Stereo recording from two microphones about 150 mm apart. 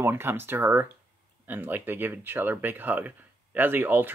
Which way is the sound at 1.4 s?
10° right (ahead or behind).